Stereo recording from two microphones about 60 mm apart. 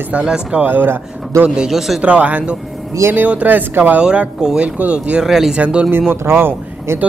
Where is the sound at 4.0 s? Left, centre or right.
Centre.